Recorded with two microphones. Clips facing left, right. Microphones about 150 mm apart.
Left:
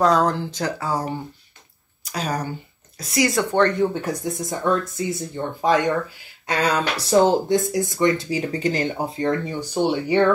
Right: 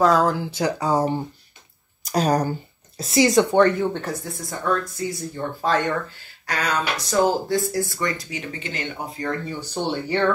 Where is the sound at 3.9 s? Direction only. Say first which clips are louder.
Left 4 dB; 15° left (ahead or behind).